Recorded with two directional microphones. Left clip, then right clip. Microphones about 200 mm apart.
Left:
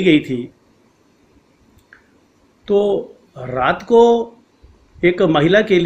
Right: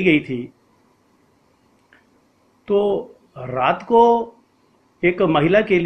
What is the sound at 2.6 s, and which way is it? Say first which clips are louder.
A man's voice: left 3 dB; 15° left (ahead or behind).